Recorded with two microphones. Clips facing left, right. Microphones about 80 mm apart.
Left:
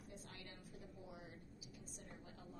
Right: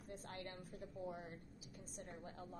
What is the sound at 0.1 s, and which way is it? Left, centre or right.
A woman's voice, right.